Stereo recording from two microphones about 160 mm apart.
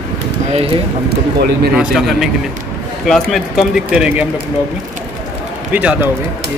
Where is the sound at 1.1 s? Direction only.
80° right.